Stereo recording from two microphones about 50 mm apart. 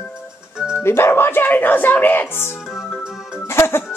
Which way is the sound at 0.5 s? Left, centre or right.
Centre.